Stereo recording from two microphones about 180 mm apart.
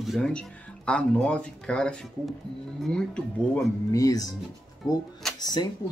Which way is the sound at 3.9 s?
20° left (ahead or behind).